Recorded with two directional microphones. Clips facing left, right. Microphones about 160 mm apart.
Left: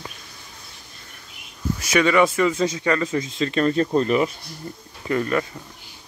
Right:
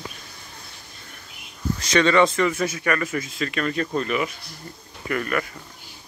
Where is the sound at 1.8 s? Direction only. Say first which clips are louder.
Even; 10° left (ahead or behind); by 4.3 s 35° left (ahead or behind).